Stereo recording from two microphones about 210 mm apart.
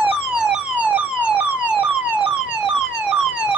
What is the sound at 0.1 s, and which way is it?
Emergency vehicle, 5° right (ahead or behind).